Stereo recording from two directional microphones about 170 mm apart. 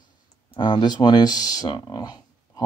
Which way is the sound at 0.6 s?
25° left (ahead or behind).